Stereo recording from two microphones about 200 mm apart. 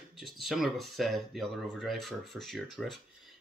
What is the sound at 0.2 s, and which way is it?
Speech, centre (ahead or behind).